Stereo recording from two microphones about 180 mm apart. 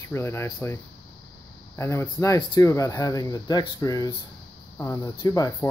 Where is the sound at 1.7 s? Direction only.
15° left (ahead or behind).